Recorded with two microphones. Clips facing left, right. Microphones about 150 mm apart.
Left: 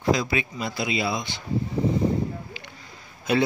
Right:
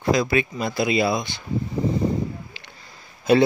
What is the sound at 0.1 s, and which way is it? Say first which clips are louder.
Speech: right 4 dB; 55° right (ahead or behind).